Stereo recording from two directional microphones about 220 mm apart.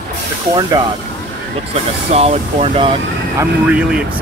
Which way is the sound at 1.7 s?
25° right (ahead or behind).